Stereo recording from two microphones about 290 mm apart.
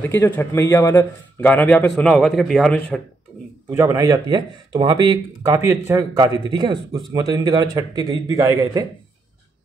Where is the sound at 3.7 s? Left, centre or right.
Centre.